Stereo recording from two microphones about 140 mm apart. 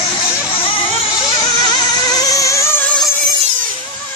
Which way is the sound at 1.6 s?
30° left (ahead or behind).